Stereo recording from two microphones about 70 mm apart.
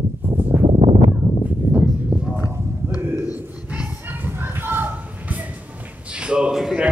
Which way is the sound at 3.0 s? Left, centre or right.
Right.